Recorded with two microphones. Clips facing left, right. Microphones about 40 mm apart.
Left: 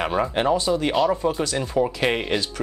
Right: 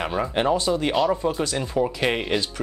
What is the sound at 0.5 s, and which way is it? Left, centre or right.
Speech, right.